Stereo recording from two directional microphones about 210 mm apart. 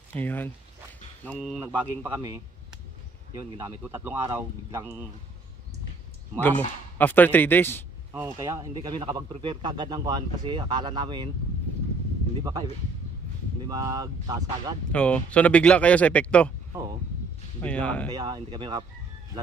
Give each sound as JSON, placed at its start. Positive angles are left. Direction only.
{"t": 0.1, "sound": "speech", "side_deg": 10}
{"t": 1.6, "sound": "speech", "side_deg": -10}
{"t": 6.4, "sound": "speech", "side_deg": 10}
{"t": 8.1, "sound": "speech", "side_deg": -15}
{"t": 13.7, "sound": "speech", "side_deg": -15}
{"t": 14.9, "sound": "speech", "side_deg": 5}
{"t": 17.6, "sound": "speech", "side_deg": 5}
{"t": 18.1, "sound": "speech", "side_deg": -20}